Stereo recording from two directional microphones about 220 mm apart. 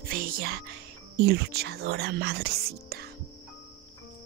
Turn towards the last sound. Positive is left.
turn(degrees=-45)  # may be behind; listen again after turning